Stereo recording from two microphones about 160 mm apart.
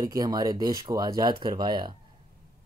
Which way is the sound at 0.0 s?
20° right (ahead or behind).